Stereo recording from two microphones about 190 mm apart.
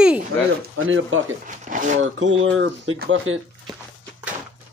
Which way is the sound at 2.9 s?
55° right (ahead or behind).